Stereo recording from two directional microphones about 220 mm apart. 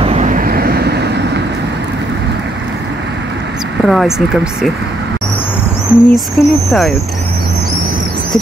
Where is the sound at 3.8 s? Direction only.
Centre (ahead or behind).